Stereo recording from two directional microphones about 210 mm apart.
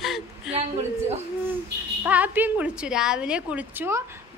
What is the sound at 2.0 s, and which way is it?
A woman's voice, 10° right (ahead or behind).